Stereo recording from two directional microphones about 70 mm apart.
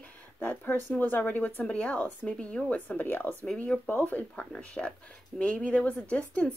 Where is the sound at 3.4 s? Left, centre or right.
Centre.